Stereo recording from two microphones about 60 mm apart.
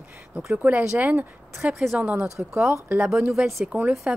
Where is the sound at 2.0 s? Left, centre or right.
Right.